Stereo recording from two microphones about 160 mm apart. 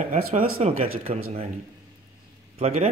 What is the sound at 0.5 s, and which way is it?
Speech, 40° right (ahead or behind).